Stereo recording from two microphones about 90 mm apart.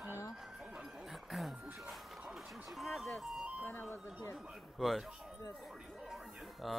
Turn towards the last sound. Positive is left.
turn(degrees=0)  # may be behind; listen again after turning